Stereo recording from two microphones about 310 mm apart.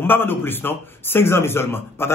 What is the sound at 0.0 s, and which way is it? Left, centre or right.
A man's voice, centre.